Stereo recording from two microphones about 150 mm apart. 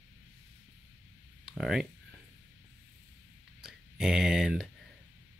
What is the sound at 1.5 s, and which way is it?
Speech, centre (ahead or behind).